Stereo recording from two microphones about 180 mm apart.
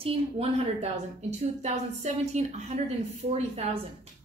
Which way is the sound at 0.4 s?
35° right (ahead or behind).